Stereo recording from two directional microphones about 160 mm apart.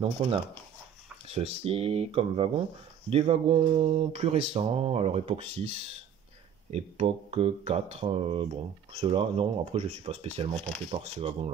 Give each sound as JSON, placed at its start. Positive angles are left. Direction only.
{"t": 0.0, "sound": "speech", "side_deg": -35}
{"t": 6.7, "sound": "speech", "side_deg": -40}